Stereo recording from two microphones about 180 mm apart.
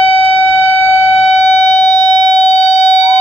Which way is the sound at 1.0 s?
35° left (ahead or behind).